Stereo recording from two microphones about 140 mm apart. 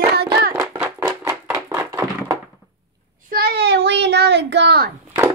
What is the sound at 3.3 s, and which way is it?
Child singing, 90° right.